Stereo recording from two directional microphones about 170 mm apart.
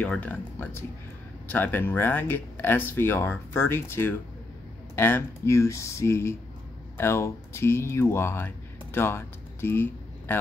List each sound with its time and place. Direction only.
0.0 s speech: 5° left (ahead or behind)